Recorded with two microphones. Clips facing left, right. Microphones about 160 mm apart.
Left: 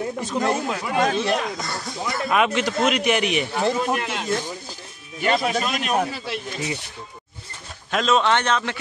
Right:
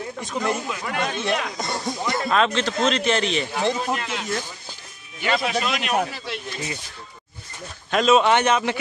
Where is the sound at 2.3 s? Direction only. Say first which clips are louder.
Left 1 dB; 10° left (ahead or behind).